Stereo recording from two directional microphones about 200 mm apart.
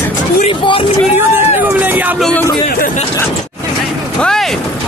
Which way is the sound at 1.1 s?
10° right (ahead or behind).